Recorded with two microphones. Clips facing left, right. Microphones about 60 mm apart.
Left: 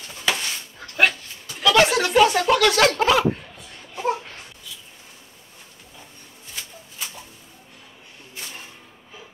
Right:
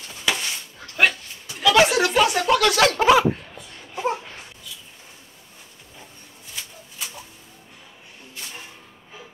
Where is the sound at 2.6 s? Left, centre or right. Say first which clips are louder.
Left 1 dB; centre.